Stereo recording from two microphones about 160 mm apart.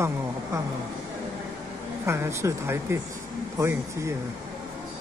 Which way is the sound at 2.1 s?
15° right (ahead or behind).